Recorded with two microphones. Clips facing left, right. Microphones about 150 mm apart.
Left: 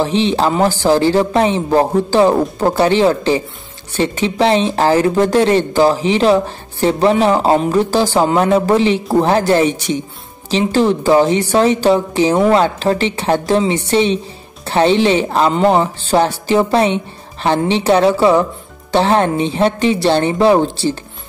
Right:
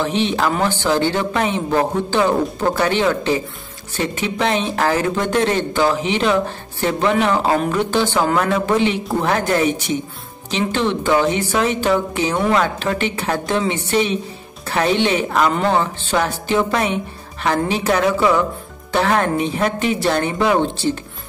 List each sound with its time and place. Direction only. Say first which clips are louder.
0.0 s a woman's voice: left 4 dB; 30° left (ahead or behind)